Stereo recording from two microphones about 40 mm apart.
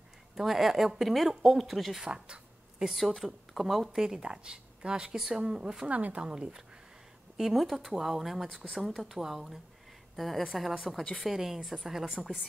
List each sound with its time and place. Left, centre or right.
0.4 s speech: centre
2.0 s a sound: right
3.2 s speech: centre
4.3 s a woman's voice: centre
5.9 s a woman's voice: right
6.3 s a woman's voice: centre
7.5 s a woman's voice: centre
10.1 s a woman's voice: centre